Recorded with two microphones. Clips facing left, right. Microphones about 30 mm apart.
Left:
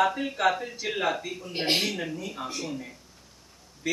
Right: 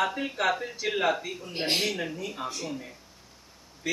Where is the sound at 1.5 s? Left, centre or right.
Left.